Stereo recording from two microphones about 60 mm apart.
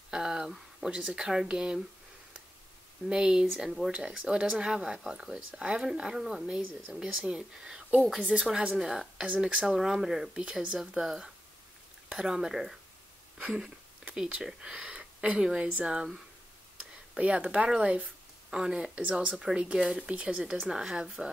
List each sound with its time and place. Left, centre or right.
0.1 s speech: centre
3.1 s speech: centre
14.1 s speech: centre
17.6 s a sound: centre
18.6 s speech: centre